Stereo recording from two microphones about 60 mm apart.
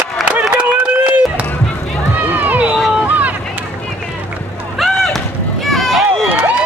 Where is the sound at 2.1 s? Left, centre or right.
Right.